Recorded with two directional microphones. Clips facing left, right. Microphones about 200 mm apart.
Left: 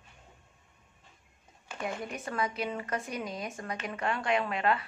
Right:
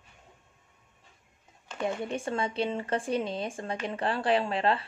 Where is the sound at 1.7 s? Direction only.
30° right (ahead or behind).